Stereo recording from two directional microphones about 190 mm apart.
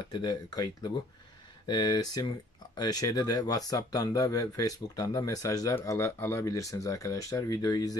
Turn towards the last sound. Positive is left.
turn(degrees=20)  # may be behind; listen again after turning